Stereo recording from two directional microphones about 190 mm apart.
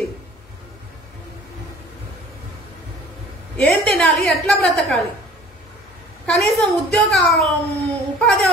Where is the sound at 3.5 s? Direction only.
5° left (ahead or behind).